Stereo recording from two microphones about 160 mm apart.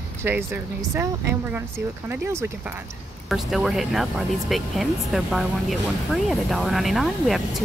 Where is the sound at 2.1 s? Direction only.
15° right (ahead or behind).